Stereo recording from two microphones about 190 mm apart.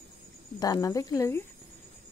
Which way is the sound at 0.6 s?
20° left (ahead or behind).